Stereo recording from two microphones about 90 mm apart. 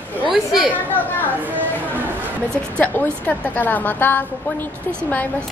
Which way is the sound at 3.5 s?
20° left (ahead or behind).